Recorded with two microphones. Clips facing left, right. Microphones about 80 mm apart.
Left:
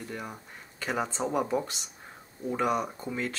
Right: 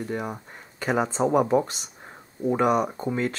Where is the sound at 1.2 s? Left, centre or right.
Right.